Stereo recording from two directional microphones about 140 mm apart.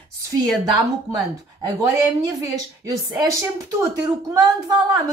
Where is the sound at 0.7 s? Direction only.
25° right (ahead or behind).